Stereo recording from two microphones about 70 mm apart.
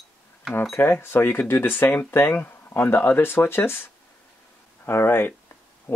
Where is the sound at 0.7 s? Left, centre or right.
Left.